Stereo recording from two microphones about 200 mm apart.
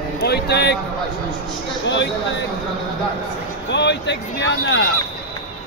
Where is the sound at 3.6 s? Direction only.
60° left (ahead or behind).